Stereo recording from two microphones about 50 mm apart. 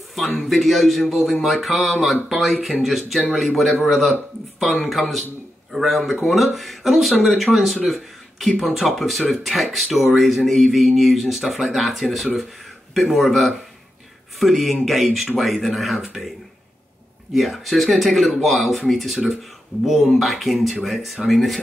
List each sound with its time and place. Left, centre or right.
0.4 s speech: centre
17.3 s speech: centre